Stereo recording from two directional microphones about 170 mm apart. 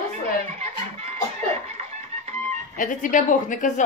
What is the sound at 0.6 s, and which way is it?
Music, 40° right (ahead or behind).